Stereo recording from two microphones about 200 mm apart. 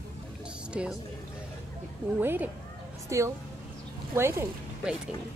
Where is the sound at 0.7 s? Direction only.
5° right (ahead or behind).